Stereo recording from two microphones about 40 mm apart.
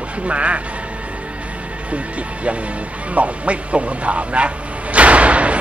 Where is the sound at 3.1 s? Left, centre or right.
Right.